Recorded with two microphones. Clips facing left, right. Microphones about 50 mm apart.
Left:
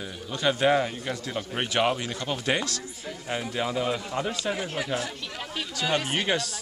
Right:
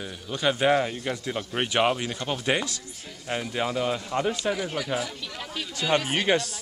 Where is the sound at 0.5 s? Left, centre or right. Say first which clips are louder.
Even; centre.